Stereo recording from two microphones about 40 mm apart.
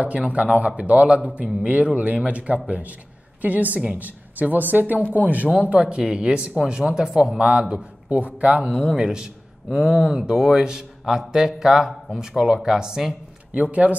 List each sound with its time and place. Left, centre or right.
0.0 s a man's voice: right
5.6 s speech: right
8.1 s a man's voice: right
8.9 s a man's voice: centre
13.6 s a man's voice: right